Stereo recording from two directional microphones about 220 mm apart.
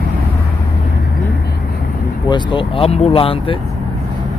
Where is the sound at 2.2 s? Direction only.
20° left (ahead or behind).